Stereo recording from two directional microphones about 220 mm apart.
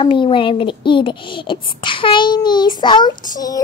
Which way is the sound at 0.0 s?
20° left (ahead or behind).